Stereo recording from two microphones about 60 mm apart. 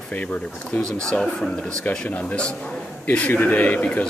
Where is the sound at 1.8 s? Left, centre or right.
Left.